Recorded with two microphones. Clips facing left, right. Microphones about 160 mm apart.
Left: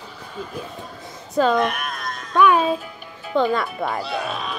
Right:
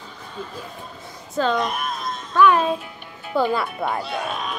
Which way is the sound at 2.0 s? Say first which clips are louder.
Right 2 dB; 25° right (ahead or behind).